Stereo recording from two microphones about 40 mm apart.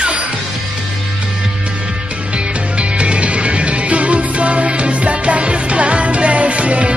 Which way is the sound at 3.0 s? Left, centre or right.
Right.